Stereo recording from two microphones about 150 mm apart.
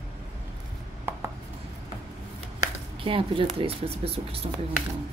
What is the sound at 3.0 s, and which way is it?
A woman's voice, 35° right (ahead or behind).